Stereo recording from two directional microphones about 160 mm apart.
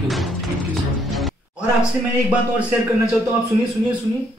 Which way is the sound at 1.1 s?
5° right (ahead or behind).